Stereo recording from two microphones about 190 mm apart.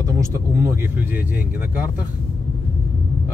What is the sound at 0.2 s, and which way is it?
Speech, 15° right (ahead or behind).